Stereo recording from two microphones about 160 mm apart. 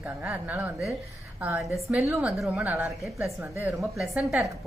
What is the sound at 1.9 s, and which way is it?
Speech, 15° right (ahead or behind).